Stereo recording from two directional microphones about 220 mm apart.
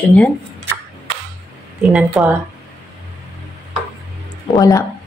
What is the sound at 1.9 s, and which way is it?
Speech, 5° right (ahead or behind).